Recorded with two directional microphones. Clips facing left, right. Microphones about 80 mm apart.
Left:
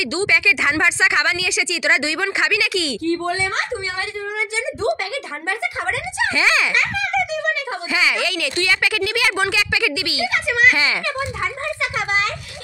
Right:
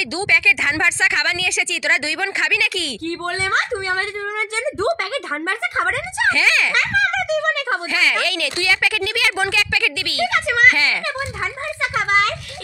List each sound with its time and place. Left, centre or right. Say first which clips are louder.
0.3 s a woman's voice: right 2 dB; centre
6.3 s speech: left 1 dB; centre
6.7 s speech: right 2 dB; right
7.9 s a woman's voice: left 4 dB; centre
10.3 s a child's voice: right 1 dB; right